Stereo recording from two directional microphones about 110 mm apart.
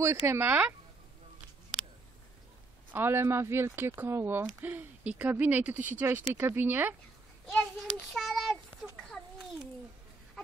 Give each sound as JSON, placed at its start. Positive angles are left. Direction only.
{"t": 0.0, "sound": "speech", "side_deg": -25}
{"t": 2.9, "sound": "speech", "side_deg": -20}
{"t": 7.5, "sound": "child singing", "side_deg": 5}